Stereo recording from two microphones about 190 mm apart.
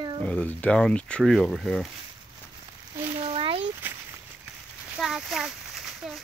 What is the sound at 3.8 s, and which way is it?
Walk, 10° right (ahead or behind).